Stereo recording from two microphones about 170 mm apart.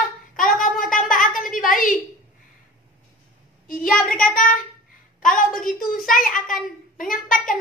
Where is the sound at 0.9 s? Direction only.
50° left (ahead or behind).